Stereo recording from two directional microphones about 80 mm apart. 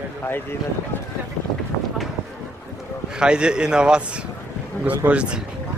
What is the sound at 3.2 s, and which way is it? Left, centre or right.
A man's voice, centre.